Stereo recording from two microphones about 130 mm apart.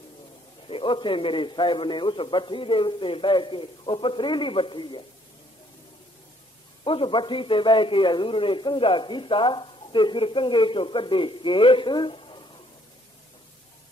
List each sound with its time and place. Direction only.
0.7 s a man's voice: 40° left (ahead or behind)
6.8 s a man's voice: 40° left (ahead or behind)